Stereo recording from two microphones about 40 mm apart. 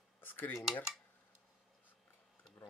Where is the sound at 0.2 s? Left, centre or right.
Left.